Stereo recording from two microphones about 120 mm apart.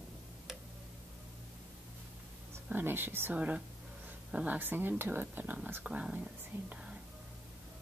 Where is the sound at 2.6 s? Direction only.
15° right (ahead or behind).